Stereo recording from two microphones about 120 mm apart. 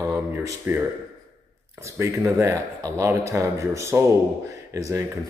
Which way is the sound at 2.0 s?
25° right (ahead or behind).